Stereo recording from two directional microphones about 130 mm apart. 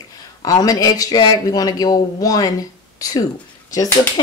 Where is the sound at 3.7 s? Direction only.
30° left (ahead or behind).